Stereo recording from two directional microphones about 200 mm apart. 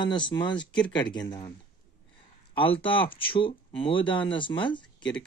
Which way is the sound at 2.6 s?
25° left (ahead or behind).